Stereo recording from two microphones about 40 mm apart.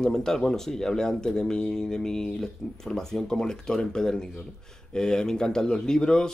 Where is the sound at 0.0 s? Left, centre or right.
Centre.